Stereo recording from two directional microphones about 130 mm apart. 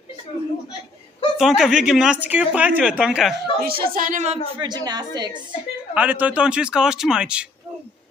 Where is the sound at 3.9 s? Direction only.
90° right.